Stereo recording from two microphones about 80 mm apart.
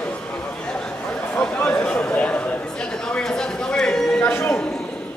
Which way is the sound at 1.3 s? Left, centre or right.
Centre.